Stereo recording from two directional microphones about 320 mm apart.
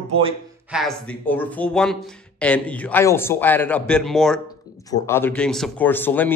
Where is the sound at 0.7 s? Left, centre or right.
Centre.